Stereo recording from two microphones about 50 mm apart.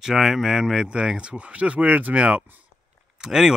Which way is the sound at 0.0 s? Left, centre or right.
Centre.